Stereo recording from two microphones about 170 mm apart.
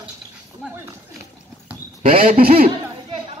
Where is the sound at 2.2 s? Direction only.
55° right (ahead or behind).